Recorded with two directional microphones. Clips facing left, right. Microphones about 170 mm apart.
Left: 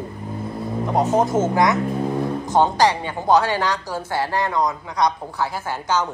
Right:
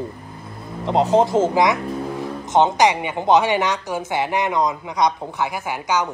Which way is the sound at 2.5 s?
20° right (ahead or behind).